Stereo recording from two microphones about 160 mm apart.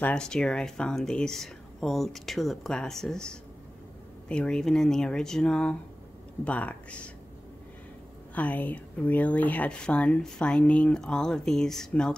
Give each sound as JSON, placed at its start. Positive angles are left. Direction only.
{"t": 0.0, "sound": "speech", "side_deg": 5}
{"t": 8.4, "sound": "speech", "side_deg": 10}